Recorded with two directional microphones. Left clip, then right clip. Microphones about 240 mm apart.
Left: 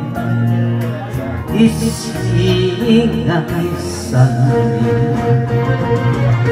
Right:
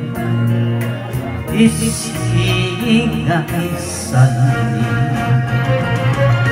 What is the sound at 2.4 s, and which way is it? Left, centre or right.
Music, right.